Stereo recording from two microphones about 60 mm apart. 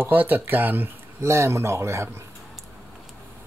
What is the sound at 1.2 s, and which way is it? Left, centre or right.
Speech, right.